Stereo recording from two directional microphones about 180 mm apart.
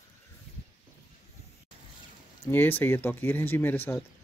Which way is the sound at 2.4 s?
10° left (ahead or behind).